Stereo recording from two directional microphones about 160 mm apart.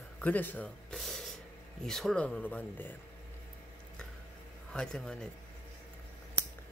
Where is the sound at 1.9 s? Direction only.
Centre (ahead or behind).